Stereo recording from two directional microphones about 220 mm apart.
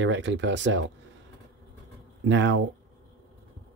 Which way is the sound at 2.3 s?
55° right (ahead or behind).